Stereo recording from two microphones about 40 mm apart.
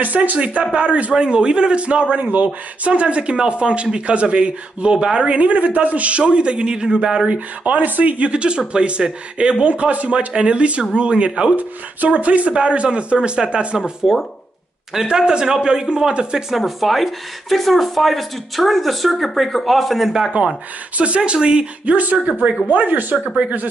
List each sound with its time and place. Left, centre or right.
0.0 s speech: right
1.1 s speech: right
5.3 s speech: right; by 7.2 s centre
7.2 s speech: right
11.5 s speech: right
14.0 s speech: centre
15.0 s speech: centre
16.4 s speech: centre
20.1 s speech: centre
21.2 s speech: right
21.9 s speech: right